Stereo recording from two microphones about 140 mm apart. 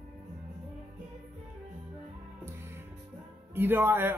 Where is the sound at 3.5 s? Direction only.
15° right (ahead or behind).